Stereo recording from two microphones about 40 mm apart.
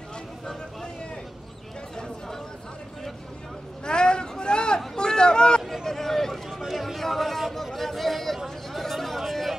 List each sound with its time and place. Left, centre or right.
3.8 s vehicle: left
5.9 s run: centre
6.7 s a sound: centre
8.7 s chatter: centre